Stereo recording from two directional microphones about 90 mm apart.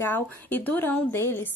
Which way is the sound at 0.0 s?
20° left (ahead or behind).